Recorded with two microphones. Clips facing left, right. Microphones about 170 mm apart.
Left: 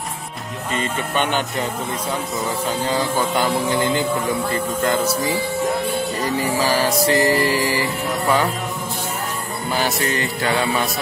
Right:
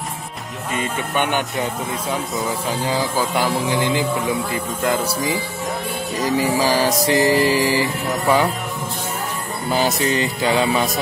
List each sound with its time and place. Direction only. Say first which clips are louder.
0.7 s music: even; 15° right (ahead or behind)
2.3 s speech: even; 5° right (ahead or behind)
6.2 s music: right 4 dB; 15° right (ahead or behind)
9.7 s music: right 3 dB; 20° right (ahead or behind)